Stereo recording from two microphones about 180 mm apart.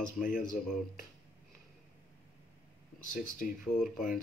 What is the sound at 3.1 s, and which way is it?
Speech, 50° left (ahead or behind).